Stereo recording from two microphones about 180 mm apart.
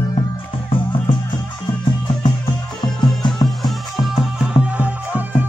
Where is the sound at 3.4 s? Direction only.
Centre (ahead or behind).